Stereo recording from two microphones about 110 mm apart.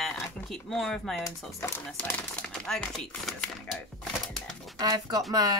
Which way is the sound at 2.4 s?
5° left (ahead or behind).